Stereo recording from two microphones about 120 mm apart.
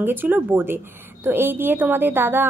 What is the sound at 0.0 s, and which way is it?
A woman's voice, 15° right (ahead or behind).